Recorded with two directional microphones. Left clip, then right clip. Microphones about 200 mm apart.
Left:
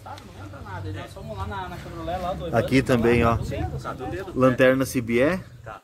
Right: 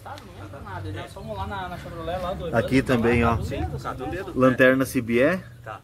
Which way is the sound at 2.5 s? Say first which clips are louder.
Left 1 dB; 15° left (ahead or behind).